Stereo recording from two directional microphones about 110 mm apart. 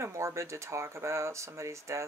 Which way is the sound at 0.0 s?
25° right (ahead or behind).